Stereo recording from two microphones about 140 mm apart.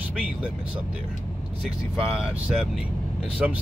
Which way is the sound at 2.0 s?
5° right (ahead or behind).